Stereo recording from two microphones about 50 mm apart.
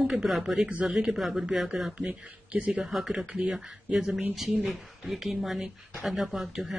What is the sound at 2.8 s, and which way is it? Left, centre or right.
Speech, centre.